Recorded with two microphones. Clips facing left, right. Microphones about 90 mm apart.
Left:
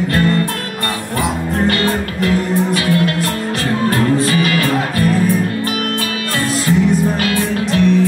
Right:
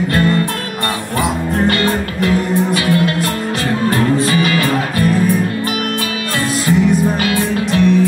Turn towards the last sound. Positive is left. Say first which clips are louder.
# right 1 dB
turn(degrees=-20)  # may be behind; listen again after turning